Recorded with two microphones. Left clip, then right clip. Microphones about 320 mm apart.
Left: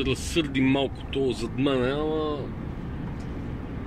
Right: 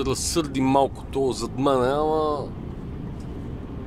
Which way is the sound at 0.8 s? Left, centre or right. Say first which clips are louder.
Right 4 dB; right.